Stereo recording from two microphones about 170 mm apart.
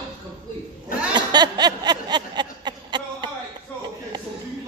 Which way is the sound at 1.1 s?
25° right (ahead or behind).